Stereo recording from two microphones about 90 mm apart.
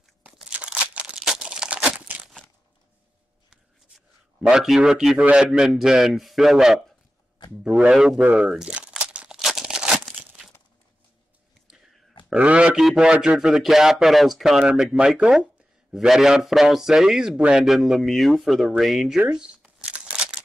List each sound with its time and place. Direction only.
0.2 s crumpling: 10° right (ahead or behind)
3.4 s a sound: centre (ahead or behind)
5.2 s a man's voice: 10° right (ahead or behind)
8.2 s speech: 15° right (ahead or behind)
8.5 s crumpling: 10° right (ahead or behind)
12.4 s a man's voice: 15° right (ahead or behind)
18.8 s shuffling cards: centre (ahead or behind)